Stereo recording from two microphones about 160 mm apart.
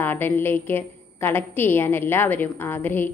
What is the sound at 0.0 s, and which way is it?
A woman's voice, 10° left (ahead or behind).